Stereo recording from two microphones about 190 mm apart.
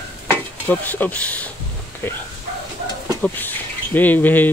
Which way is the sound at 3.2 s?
10° left (ahead or behind).